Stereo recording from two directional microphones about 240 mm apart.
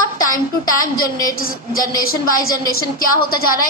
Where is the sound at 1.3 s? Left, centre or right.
Left.